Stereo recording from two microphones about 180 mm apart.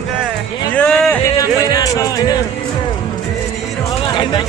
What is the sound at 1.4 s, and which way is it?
Music, 20° left (ahead or behind).